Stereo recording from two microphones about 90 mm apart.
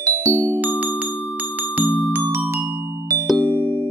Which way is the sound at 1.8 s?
15° right (ahead or behind).